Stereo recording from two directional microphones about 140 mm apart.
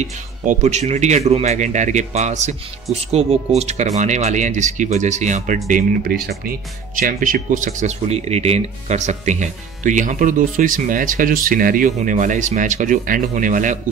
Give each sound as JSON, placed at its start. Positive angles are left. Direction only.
{"t": 0.0, "sound": "speech", "side_deg": -55}
{"t": 7.0, "sound": "speech", "side_deg": -80}